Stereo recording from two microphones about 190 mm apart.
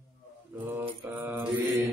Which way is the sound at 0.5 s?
10° right (ahead or behind).